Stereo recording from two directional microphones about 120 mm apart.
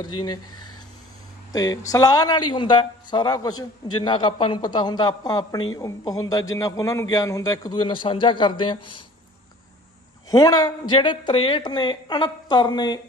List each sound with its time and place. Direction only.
0.0 s a man's voice: 35° left (ahead or behind)
1.5 s a man's voice: 30° left (ahead or behind)
10.3 s a man's voice: 35° left (ahead or behind)